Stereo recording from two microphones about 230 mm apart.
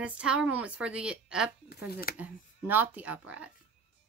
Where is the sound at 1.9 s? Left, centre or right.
Left.